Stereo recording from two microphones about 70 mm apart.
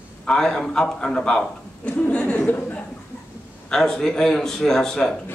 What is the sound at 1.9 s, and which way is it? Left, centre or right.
Speech, left.